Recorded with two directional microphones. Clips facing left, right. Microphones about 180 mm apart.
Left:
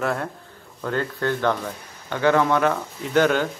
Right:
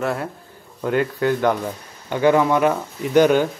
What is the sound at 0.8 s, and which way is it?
Speech, 15° right (ahead or behind).